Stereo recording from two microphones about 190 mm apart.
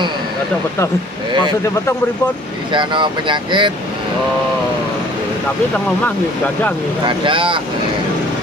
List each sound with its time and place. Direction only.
2.7 s speech: 25° right (ahead or behind)
7.1 s speech: 25° right (ahead or behind)